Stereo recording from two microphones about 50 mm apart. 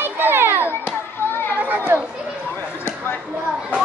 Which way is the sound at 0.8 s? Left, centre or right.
Left.